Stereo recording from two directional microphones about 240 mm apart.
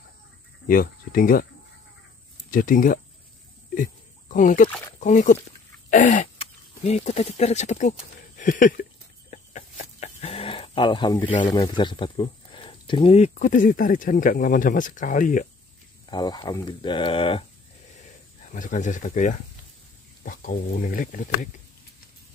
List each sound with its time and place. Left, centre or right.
0.7 s speech: left
2.5 s speech: left
3.7 s a sound: left
4.9 s speech: left
8.4 s a sound: left
9.3 s speech: left
16.1 s speech: centre
18.5 s speech: left